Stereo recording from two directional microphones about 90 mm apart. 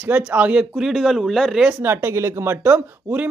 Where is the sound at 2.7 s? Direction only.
15° right (ahead or behind).